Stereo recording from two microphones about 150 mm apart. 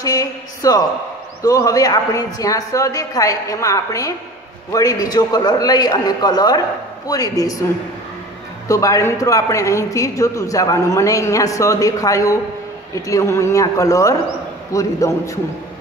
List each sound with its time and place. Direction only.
0.0 s a man's voice: 25° left (ahead or behind)
8.6 s a man's voice: 20° left (ahead or behind)